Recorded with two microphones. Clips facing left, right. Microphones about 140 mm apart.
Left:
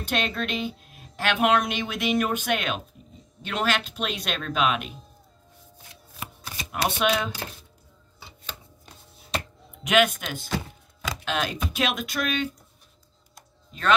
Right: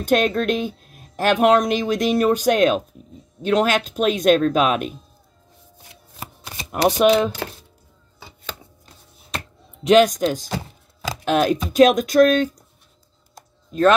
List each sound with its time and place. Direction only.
0.0 s speech: 45° right (ahead or behind)
6.1 s shuffling cards: 25° right (ahead or behind)
6.7 s speech: 40° right (ahead or behind)
9.8 s speech: 35° right (ahead or behind)